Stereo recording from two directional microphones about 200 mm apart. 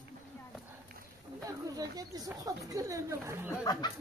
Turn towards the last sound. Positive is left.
turn(degrees=20)  # may be behind; listen again after turning